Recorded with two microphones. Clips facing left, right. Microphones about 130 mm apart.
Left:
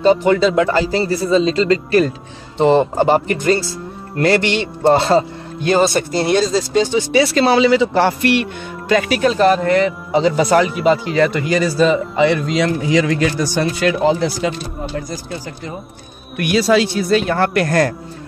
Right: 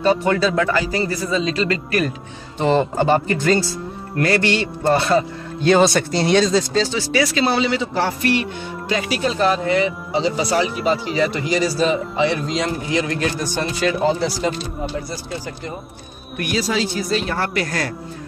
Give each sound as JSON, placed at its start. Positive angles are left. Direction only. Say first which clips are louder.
{"t": 0.0, "sound": "a man's voice", "louder": "left 4 dB", "side_deg": 20}
{"t": 5.8, "sound": "speech", "louder": "left 1 dB", "side_deg": 5}
{"t": 6.7, "sound": "speech", "louder": "left 5 dB", "side_deg": 15}
{"t": 7.4, "sound": "a man's voice", "louder": "left 7 dB", "side_deg": 80}
{"t": 12.5, "sound": "a man's voice", "louder": "left 5 dB", "side_deg": 90}
{"t": 16.3, "sound": "a man's voice", "louder": "left 7 dB", "side_deg": 70}